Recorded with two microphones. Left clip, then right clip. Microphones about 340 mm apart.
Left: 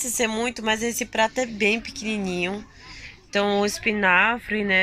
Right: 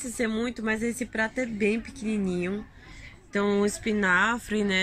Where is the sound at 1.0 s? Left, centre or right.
Left.